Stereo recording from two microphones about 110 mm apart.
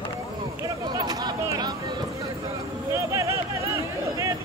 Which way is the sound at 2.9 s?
30° right (ahead or behind).